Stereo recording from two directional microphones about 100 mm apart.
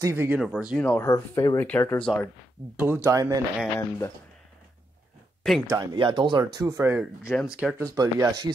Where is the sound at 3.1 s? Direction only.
35° right (ahead or behind).